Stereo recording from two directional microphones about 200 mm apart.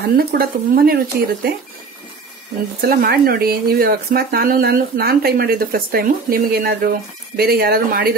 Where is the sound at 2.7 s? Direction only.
50° right (ahead or behind).